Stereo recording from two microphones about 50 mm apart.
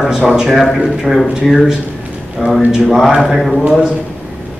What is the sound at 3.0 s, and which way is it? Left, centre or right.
Speech, centre.